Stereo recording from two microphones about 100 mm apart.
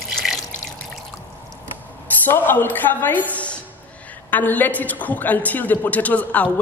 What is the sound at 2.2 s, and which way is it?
A woman's voice, 20° left (ahead or behind).